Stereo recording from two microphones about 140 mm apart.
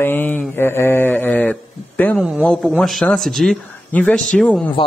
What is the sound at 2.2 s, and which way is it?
Speech, 10° right (ahead or behind).